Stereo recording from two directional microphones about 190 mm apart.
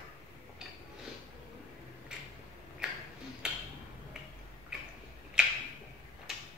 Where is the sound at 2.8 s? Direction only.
5° right (ahead or behind).